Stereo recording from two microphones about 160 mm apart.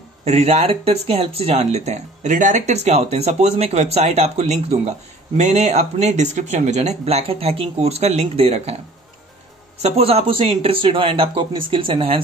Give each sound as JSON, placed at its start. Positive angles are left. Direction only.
{"t": 0.2, "sound": "speech", "side_deg": -40}
{"t": 9.8, "sound": "speech", "side_deg": -40}